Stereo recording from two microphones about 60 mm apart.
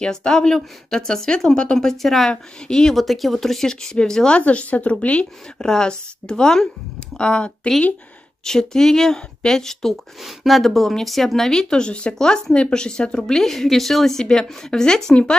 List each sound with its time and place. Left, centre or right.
0.0 s speech: centre